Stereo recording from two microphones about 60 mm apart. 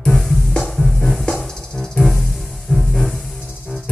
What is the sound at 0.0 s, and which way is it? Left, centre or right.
Music, centre.